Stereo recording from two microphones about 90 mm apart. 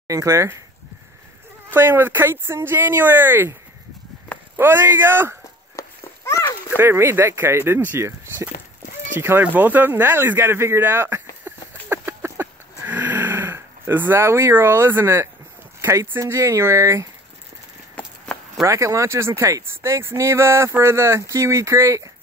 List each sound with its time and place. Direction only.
0.1 s speech: 35° right (ahead or behind)
1.7 s speech: 25° right (ahead or behind)
4.6 s speech: 25° right (ahead or behind)
5.8 s a sound: 35° left (ahead or behind)
6.8 s speech: 30° right (ahead or behind)
9.2 s speech: 20° right (ahead or behind)
11.5 s a sound: 25° right (ahead or behind)
15.8 s speech: 30° right (ahead or behind)
17.9 s a sound: 10° left (ahead or behind)
18.6 s speech: 35° right (ahead or behind)